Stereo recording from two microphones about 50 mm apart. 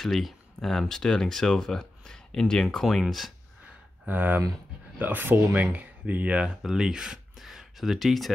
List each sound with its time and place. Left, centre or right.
0.0 s speech: centre
4.1 s speech: right
6.6 s speech: centre